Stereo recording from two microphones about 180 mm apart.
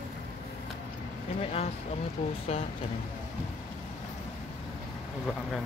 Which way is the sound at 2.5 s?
35° left (ahead or behind).